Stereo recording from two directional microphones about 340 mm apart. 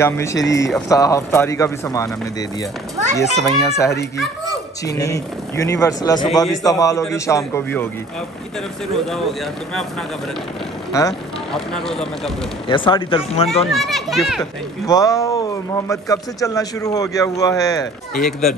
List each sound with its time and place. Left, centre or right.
0.0 s a man's voice: centre
3.2 s a man's voice: centre
8.9 s speech: centre
10.9 s speech: centre
12.6 s a man's voice: centre
13.7 s a man's voice: centre